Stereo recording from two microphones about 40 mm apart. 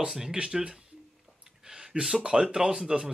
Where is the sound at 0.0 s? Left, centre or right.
Centre.